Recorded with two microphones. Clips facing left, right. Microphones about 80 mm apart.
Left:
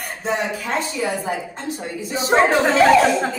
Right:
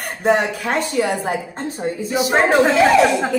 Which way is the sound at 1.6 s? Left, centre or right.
Right.